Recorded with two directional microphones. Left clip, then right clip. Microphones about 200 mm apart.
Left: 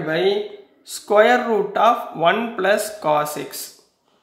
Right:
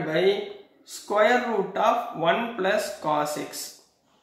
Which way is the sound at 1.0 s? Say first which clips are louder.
Left 6 dB; 45° left (ahead or behind).